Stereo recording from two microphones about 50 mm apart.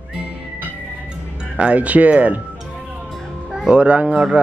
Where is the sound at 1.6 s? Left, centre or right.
Right.